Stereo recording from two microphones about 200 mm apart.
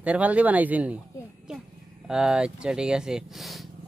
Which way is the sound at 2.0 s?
5° right (ahead or behind).